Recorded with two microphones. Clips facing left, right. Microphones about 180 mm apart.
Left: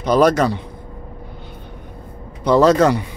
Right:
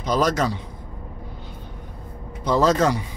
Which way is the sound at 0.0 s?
60° left (ahead or behind).